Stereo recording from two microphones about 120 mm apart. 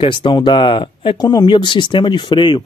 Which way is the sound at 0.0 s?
40° left (ahead or behind).